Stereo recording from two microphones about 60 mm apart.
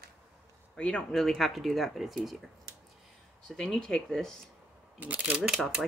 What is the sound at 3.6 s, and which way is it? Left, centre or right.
Speech, centre.